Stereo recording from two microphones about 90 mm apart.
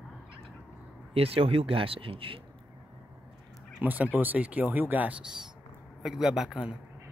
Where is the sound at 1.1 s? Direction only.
90° right.